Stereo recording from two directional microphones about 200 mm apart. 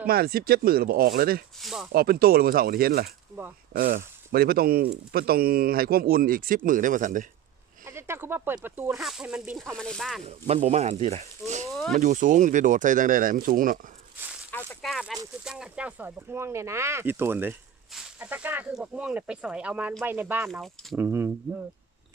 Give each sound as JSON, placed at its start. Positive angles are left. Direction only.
{"t": 0.0, "sound": "speech", "side_deg": -50}
{"t": 1.6, "sound": "speech", "side_deg": 0}
{"t": 1.9, "sound": "speech", "side_deg": -50}
{"t": 7.8, "sound": "speech", "side_deg": -10}
{"t": 10.2, "sound": "speech", "side_deg": -30}
{"t": 11.7, "sound": "speech", "side_deg": 0}
{"t": 12.0, "sound": "speech", "side_deg": -40}
{"t": 14.5, "sound": "a sound", "side_deg": 10}
{"t": 14.9, "sound": "speech", "side_deg": 0}